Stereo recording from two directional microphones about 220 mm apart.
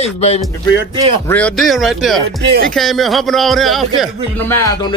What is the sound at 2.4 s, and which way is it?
Speech, 50° right (ahead or behind).